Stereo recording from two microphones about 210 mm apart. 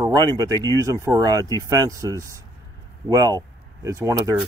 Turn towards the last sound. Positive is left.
turn(degrees=-15)  # may be behind; listen again after turning